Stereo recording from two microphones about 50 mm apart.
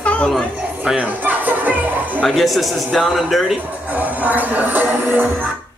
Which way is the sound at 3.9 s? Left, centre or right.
Right.